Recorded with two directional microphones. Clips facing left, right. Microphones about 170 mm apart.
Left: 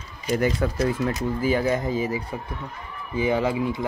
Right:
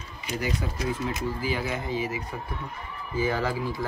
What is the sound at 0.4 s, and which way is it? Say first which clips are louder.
Speech: left 7 dB; 55° left (ahead or behind).